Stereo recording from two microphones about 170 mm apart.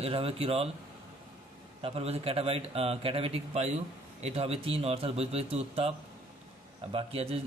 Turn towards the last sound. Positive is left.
turn(degrees=-35)  # may be behind; listen again after turning